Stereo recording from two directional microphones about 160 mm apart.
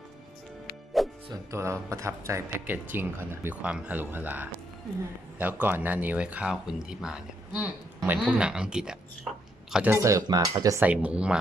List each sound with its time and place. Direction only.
1.0 s music: centre (ahead or behind)
1.3 s speech: 20° right (ahead or behind)
10.0 s speech: 20° right (ahead or behind)
10.9 s speech: 10° right (ahead or behind)